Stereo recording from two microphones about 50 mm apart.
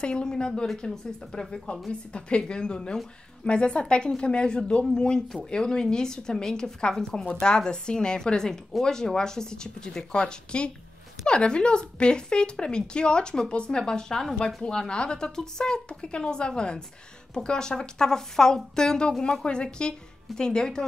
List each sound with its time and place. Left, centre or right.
0.0 s speech: centre